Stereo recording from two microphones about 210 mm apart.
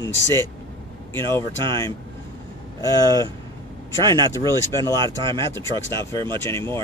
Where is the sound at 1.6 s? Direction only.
20° right (ahead or behind).